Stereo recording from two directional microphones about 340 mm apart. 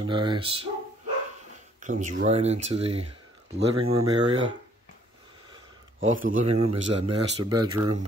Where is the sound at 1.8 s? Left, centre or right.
Right.